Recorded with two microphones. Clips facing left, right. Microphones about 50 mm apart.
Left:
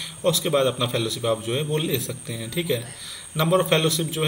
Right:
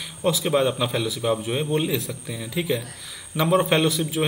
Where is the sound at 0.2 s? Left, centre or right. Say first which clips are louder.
Even; centre.